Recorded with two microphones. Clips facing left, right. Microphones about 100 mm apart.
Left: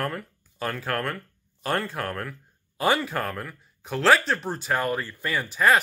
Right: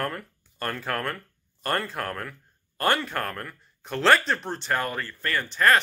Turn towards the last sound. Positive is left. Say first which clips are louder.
# even
turn(degrees=10)  # may be behind; listen again after turning